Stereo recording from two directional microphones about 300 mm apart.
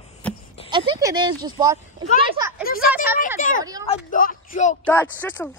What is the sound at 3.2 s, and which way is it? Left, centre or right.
Speech, left.